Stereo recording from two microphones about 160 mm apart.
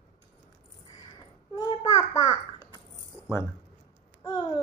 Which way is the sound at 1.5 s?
25° left (ahead or behind).